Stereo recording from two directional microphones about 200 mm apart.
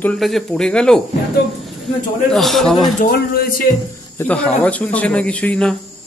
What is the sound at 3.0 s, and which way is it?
Speech, 45° left (ahead or behind).